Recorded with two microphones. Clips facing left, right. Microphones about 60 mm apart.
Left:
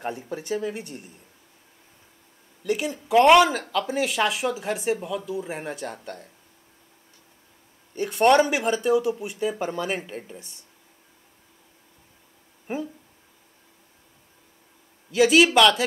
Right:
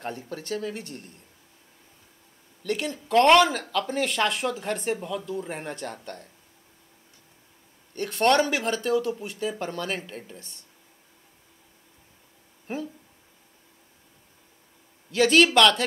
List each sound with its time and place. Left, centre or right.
0.0 s speech: centre
2.6 s speech: centre
7.9 s speech: centre
12.6 s speech: centre
15.0 s speech: centre